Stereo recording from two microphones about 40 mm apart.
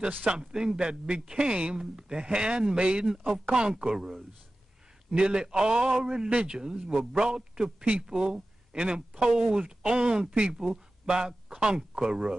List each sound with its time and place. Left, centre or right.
0.3 s speech: centre
6.2 s speech: right